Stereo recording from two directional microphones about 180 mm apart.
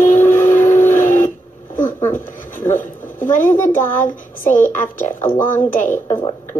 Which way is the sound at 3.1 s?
45° left (ahead or behind).